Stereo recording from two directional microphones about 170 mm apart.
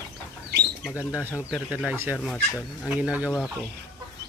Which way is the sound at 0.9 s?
15° left (ahead or behind).